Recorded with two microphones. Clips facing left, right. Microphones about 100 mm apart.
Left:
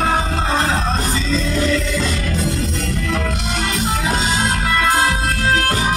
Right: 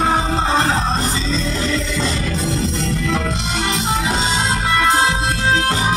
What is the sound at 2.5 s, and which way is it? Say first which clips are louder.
Music: right 2 dB; 30° right (ahead or behind).